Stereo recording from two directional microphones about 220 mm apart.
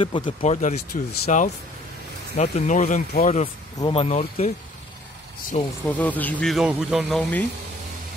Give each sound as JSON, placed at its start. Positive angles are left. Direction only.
{"t": 0.0, "sound": "speech", "side_deg": 25}
{"t": 3.8, "sound": "speech", "side_deg": 25}
{"t": 5.5, "sound": "speech", "side_deg": 25}
{"t": 5.9, "sound": "speech", "side_deg": 5}